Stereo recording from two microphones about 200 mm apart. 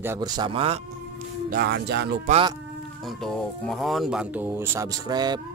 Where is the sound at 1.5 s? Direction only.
55° right (ahead or behind).